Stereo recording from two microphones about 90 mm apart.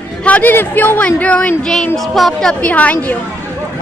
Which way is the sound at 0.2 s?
20° left (ahead or behind).